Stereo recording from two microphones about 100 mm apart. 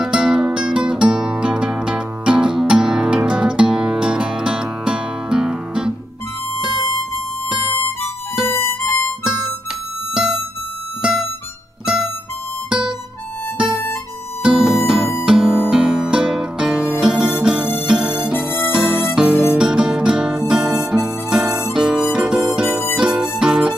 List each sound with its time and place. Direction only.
0.0 s music: 10° right (ahead or behind)
8.5 s music: 25° left (ahead or behind)
11.0 s music: 10° right (ahead or behind)
14.4 s music: 5° right (ahead or behind)